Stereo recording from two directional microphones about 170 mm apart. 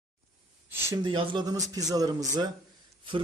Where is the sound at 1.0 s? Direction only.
30° right (ahead or behind).